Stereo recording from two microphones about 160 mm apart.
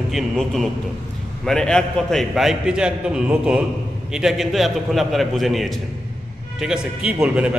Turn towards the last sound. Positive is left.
turn(degrees=-5)  # may be behind; listen again after turning